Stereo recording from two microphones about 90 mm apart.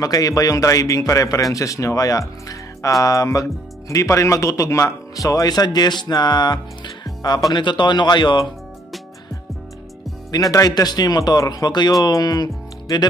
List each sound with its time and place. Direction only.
0.0 s a man's voice: 40° left (ahead or behind)
7.5 s speech: 60° left (ahead or behind)
10.3 s a man's voice: 40° left (ahead or behind)